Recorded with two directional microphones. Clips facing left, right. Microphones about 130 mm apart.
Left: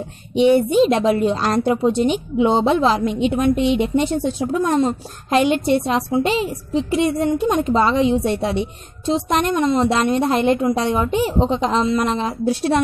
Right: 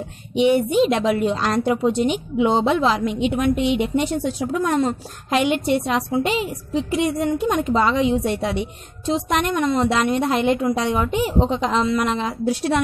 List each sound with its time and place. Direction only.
0.3 s a woman's voice: 35° left (ahead or behind)